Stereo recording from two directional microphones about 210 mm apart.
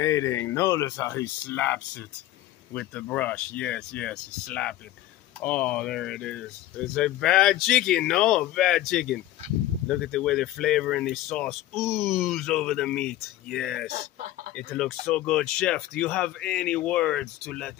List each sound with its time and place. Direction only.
0.0 s speech: 15° left (ahead or behind)